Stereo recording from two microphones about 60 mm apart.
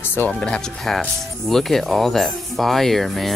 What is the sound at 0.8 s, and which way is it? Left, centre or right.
Speech, centre.